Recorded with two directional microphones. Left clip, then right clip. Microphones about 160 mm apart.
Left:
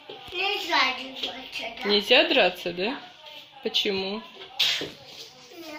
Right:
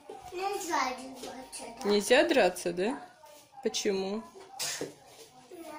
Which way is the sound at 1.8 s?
20° right (ahead or behind).